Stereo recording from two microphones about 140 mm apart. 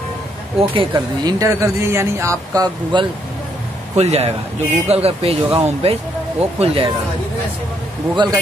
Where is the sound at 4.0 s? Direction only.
50° right (ahead or behind).